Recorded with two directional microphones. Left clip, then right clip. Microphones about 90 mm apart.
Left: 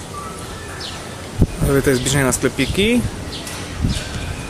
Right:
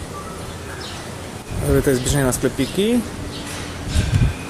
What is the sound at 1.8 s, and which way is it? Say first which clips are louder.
Speech: left 2 dB; 5° left (ahead or behind).